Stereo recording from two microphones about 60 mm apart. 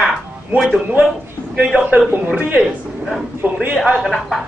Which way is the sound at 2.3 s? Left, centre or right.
Right.